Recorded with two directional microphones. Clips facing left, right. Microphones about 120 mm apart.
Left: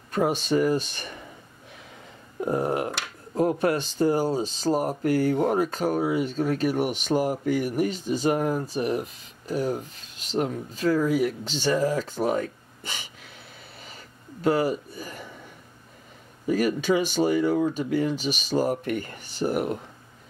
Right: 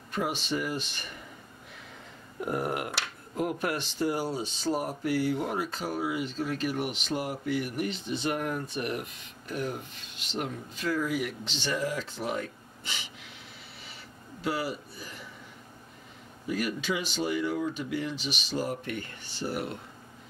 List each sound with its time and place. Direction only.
0.1 s speech: 40° left (ahead or behind)
2.4 s speech: 30° left (ahead or behind); by 13.3 s 45° left (ahead or behind)
14.4 s a sound: 45° left (ahead or behind)
16.4 s speech: 40° left (ahead or behind)